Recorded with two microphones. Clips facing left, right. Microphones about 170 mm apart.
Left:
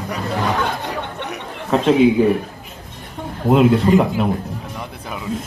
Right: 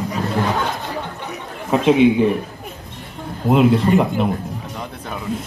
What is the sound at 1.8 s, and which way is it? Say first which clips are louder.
Speech: even; centre (ahead or behind).